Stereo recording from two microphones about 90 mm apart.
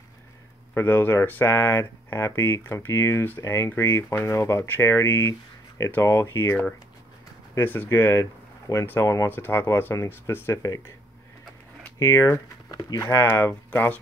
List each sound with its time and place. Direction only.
0.7 s speech: 25° left (ahead or behind)
9.0 s speech: 40° left (ahead or behind)
9.3 s speech: 25° left (ahead or behind)
10.6 s speech: 40° left (ahead or behind)
12.0 s speech: 35° left (ahead or behind)
12.7 s speech: 45° left (ahead or behind)
13.2 s speech: 25° left (ahead or behind)